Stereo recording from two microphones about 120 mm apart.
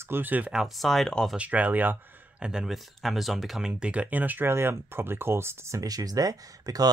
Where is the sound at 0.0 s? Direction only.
15° right (ahead or behind); by 1.3 s 5° left (ahead or behind).